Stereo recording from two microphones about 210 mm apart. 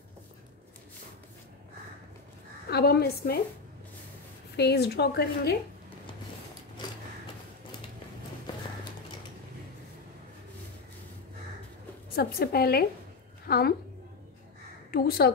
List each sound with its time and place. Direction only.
2.7 s a woman's voice: 50° left (ahead or behind)
4.6 s a woman's voice: 50° left (ahead or behind)
12.2 s a woman's voice: 45° left (ahead or behind)
14.9 s a woman's voice: 45° left (ahead or behind)